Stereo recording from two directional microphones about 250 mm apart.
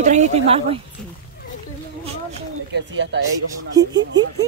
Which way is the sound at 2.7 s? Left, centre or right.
Right.